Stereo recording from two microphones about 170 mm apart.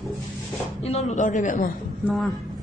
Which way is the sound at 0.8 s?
40° left (ahead or behind).